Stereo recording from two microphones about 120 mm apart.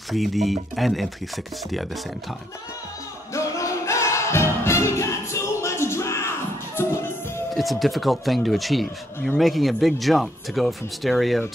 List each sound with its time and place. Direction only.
0.1 s speech: centre (ahead or behind)
3.3 s music: 25° left (ahead or behind)
7.5 s speech: centre (ahead or behind)